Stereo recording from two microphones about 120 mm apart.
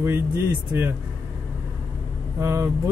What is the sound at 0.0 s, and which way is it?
Speech, 20° right (ahead or behind).